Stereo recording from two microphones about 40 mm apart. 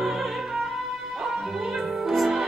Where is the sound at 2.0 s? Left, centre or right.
Centre.